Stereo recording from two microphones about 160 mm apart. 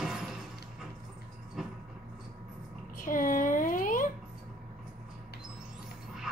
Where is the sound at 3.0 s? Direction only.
55° left (ahead or behind).